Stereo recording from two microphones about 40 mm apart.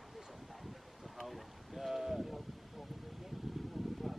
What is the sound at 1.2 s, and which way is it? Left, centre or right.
Boat, centre.